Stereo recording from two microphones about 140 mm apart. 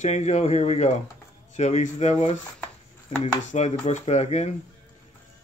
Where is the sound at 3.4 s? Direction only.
55° left (ahead or behind).